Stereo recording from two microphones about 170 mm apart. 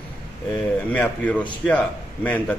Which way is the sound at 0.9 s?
10° left (ahead or behind).